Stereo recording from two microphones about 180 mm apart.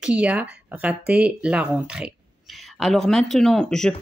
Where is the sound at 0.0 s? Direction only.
5° right (ahead or behind).